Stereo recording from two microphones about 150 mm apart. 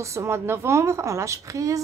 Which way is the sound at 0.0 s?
20° right (ahead or behind).